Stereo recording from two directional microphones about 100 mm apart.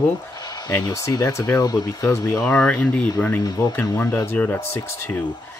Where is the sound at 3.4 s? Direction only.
40° left (ahead or behind).